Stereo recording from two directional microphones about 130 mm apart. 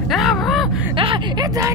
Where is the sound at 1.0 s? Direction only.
40° right (ahead or behind).